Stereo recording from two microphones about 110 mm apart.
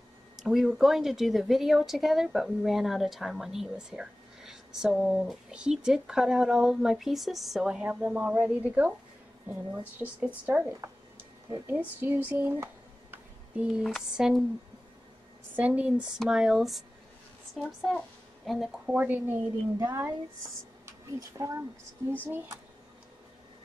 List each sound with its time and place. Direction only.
0.4 s a woman's voice: centre (ahead or behind)
12.0 s speech: 15° right (ahead or behind)
13.7 s a woman's voice: 5° right (ahead or behind)
15.5 s a woman's voice: 10° right (ahead or behind)
18.9 s speech: 15° right (ahead or behind)
19.8 s speech: 30° right (ahead or behind)